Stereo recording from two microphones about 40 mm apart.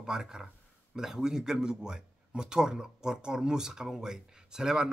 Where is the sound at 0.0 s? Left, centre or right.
Centre.